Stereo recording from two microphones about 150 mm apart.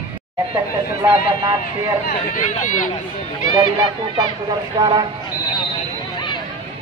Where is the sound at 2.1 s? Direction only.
65° left (ahead or behind).